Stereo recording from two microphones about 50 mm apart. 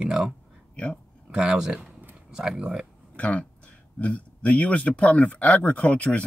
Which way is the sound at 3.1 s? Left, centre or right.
Left.